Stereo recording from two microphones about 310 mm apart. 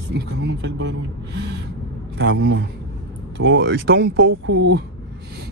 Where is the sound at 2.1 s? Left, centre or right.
Right.